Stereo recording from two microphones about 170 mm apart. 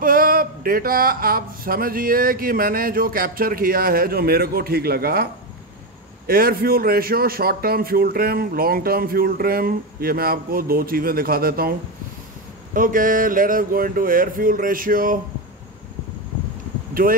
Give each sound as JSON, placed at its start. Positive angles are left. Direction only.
{"t": 0.0, "sound": "a man's voice", "side_deg": -55}
{"t": 12.7, "sound": "a man's voice", "side_deg": -55}
{"t": 17.0, "sound": "a man's voice", "side_deg": -55}